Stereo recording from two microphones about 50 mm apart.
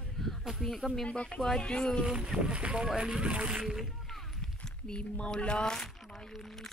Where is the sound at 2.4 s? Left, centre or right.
Right.